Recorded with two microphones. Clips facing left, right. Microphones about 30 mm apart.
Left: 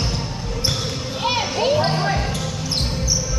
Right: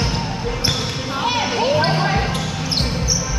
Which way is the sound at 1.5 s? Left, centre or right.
Right.